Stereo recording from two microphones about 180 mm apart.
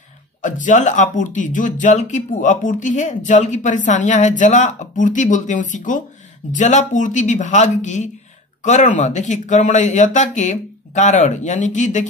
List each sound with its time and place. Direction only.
0.4 s speech: 45° left (ahead or behind)